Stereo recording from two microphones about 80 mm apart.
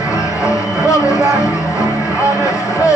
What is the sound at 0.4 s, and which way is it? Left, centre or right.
Music, left.